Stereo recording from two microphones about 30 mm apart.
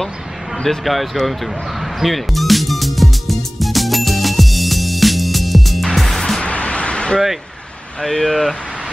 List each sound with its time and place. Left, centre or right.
0.7 s music: centre
6.4 s music: left
8.0 s speech: centre
8.3 s speech: centre